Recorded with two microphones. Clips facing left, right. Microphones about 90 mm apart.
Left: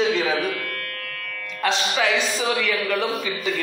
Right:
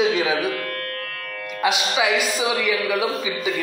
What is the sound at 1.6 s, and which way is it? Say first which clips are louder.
A man's voice: right 1 dB; 10° right (ahead or behind).